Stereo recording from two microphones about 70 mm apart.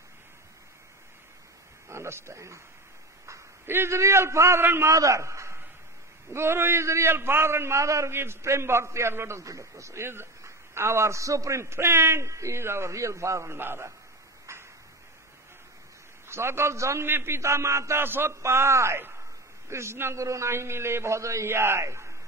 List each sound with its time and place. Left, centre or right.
1.9 s speech: right
3.3 s a man's voice: right
4.9 s a man's voice: right
14.5 s a sound: right
16.3 s a man's voice: right